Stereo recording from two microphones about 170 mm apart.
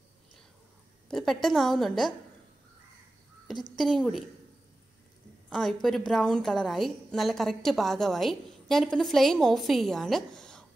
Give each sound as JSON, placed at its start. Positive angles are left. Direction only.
{"t": 1.1, "sound": "a woman's voice", "side_deg": 0}
{"t": 3.7, "sound": "a woman's voice", "side_deg": 0}
{"t": 5.5, "sound": "a woman's voice", "side_deg": 0}